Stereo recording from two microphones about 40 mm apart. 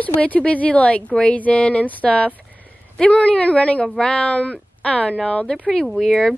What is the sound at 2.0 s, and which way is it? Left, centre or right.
Speech, left.